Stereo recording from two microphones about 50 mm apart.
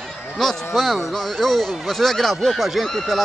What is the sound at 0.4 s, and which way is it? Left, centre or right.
Speech, centre.